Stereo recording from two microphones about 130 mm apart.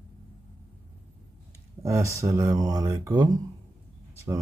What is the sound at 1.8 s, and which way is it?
Speech, 20° right (ahead or behind).